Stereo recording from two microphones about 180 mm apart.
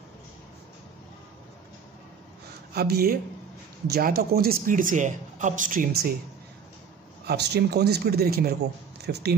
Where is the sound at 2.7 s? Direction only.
60° right (ahead or behind).